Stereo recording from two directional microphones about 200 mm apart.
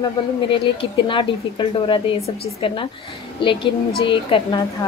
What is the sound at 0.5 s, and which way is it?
A woman's voice, 25° left (ahead or behind).